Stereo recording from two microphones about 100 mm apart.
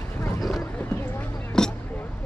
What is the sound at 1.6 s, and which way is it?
Vehicle, 5° left (ahead or behind).